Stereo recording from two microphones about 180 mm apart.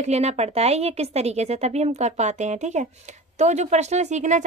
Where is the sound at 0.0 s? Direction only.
35° right (ahead or behind).